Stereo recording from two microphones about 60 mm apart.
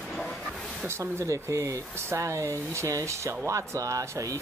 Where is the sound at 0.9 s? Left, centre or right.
Right.